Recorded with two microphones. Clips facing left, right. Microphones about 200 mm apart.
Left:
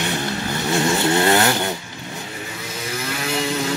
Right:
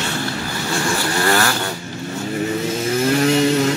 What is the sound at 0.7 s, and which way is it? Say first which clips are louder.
Vehicle: left 4 dB; 20° left (ahead or behind).